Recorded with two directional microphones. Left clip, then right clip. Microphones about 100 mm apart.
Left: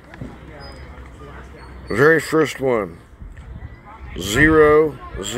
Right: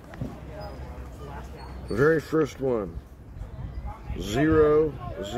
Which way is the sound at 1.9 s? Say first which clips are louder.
Left 8 dB; 40° left (ahead or behind).